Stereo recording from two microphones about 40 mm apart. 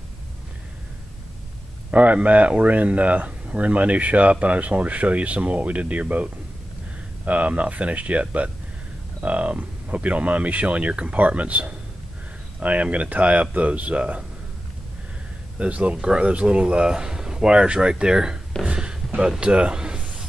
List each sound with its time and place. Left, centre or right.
1.9 s speech: right
15.6 s speech: right